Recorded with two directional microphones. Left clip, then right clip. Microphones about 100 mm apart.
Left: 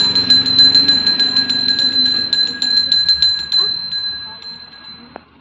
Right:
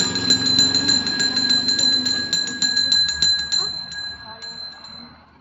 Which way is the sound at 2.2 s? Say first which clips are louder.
Left 5 dB; 25° right (ahead or behind).